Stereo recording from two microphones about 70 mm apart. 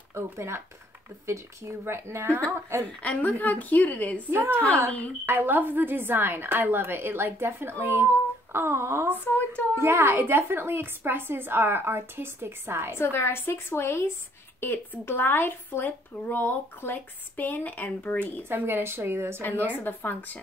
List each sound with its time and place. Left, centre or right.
0.1 s speech: right
3.0 s speech: left
4.3 s speech: right
9.3 s a woman's voice: left
9.8 s speech: right
12.9 s a woman's voice: left
18.5 s speech: right
19.5 s a woman's voice: right
19.8 s speech: left